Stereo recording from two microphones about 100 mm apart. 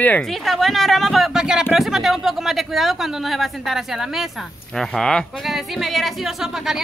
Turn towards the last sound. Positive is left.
turn(degrees=0)  # may be behind; listen again after turning